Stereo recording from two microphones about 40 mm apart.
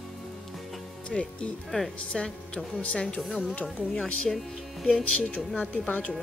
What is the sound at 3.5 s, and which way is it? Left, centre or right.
Speech, left.